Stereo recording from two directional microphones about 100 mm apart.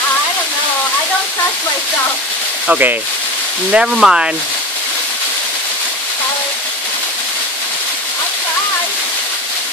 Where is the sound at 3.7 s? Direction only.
5° right (ahead or behind).